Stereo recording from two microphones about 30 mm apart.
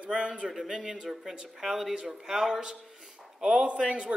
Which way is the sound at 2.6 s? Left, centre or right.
Right.